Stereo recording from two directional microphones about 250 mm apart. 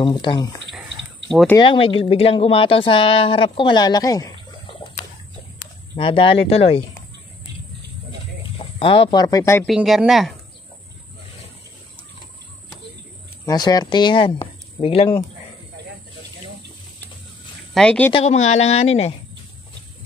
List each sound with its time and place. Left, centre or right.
0.0 s speech: centre
1.3 s speech: centre
1.6 s a woman's voice: left
5.9 s a woman's voice: left
8.5 s speech: left
9.7 s speech: centre
13.5 s a woman's voice: centre
17.7 s speech: centre
18.1 s a woman's voice: left